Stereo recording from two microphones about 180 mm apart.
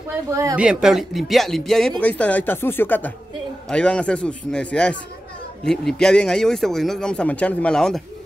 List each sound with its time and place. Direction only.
0.3 s speech: 15° right (ahead or behind)
0.6 s speech: 5° right (ahead or behind)